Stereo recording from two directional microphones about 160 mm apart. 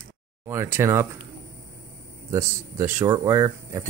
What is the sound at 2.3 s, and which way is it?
Speech, 15° right (ahead or behind).